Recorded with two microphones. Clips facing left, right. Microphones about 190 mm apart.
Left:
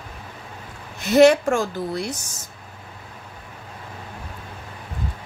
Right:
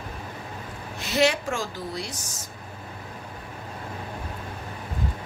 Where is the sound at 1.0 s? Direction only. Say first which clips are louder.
Left 9 dB; 50° left (ahead or behind).